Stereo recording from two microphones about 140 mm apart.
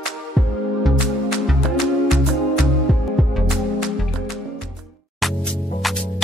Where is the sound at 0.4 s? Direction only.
Centre (ahead or behind).